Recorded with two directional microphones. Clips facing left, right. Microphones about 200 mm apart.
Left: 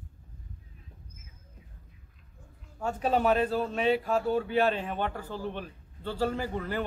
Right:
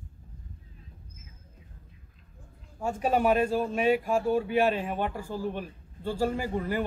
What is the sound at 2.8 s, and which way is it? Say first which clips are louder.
A man's voice: right 1 dB; 10° right (ahead or behind).